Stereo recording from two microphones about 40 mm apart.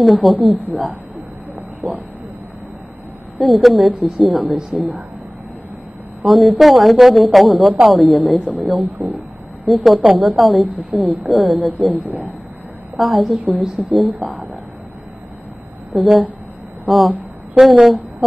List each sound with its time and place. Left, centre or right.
0.0 s a woman's voice: centre
3.3 s a woman's voice: centre
6.2 s a woman's voice: centre
8.4 s speech: right
8.6 s a woman's voice: centre
15.9 s a woman's voice: centre